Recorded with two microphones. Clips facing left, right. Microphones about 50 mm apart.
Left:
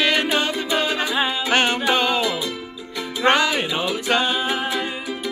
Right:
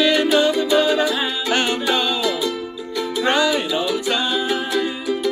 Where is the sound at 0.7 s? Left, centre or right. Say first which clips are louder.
Right 5 dB; left.